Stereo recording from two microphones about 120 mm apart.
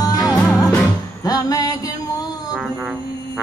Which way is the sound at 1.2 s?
30° left (ahead or behind).